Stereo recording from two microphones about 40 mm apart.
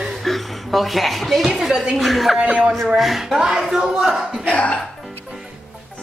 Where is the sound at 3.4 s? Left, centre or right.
Centre.